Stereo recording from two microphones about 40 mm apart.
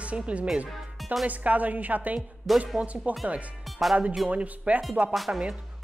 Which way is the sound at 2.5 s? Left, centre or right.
Centre.